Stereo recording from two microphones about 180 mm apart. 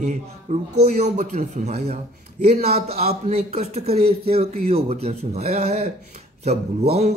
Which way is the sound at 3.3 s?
35° right (ahead or behind).